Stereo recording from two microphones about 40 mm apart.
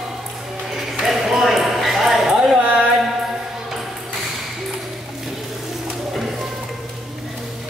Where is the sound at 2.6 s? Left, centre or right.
Right.